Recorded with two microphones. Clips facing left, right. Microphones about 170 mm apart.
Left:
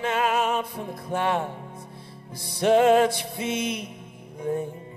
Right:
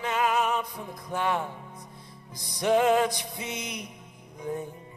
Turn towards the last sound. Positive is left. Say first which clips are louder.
# left 6 dB
turn(degrees=25)  # may be behind; listen again after turning